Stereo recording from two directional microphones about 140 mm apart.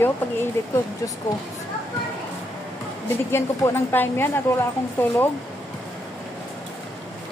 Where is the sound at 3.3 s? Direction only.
15° left (ahead or behind).